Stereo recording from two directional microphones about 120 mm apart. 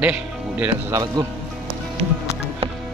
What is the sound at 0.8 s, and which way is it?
Speech, 30° right (ahead or behind).